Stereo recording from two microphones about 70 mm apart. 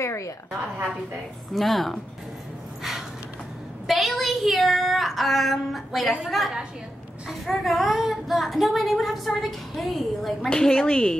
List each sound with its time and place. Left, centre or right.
0.0 s a woman's voice: left
1.5 s speech: centre
3.8 s a woman's voice: centre